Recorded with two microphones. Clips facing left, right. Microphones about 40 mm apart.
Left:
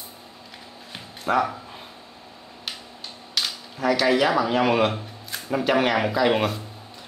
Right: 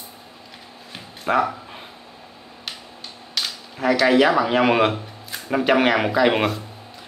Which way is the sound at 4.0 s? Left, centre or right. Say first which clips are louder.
Right 5 dB; centre.